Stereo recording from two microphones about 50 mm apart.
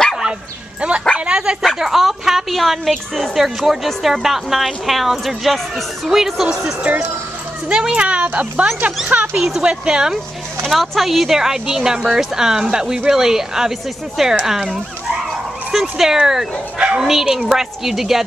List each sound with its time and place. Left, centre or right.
0.7 s a sound: right
1.8 s speech: centre
7.7 s speech: centre
9.1 s speech: centre
10.7 s speech: centre